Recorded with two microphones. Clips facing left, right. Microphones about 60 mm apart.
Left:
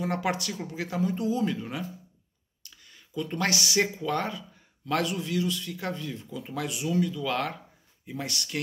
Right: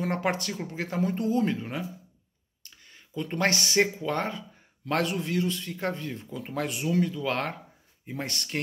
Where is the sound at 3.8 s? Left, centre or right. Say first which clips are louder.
Right 2 dB; right.